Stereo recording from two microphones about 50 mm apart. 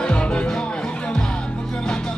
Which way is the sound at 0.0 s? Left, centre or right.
Centre.